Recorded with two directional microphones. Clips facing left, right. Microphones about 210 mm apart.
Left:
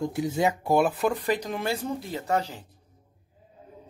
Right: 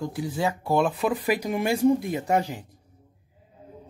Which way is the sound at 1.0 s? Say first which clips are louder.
Right 1 dB; 5° right (ahead or behind).